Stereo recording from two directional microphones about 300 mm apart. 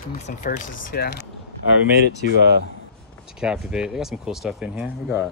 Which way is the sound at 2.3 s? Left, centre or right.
Right.